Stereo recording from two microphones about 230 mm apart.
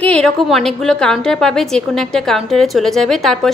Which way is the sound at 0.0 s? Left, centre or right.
Centre.